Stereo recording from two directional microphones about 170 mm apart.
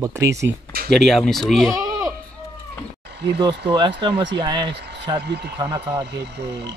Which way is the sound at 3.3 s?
80° right.